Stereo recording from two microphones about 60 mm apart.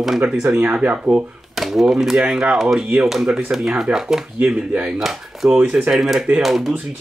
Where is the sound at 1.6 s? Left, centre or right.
Centre.